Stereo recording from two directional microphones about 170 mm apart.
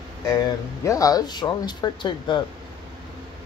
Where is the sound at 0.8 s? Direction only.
20° left (ahead or behind).